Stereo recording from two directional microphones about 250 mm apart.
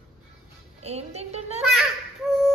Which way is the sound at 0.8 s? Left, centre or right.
Right.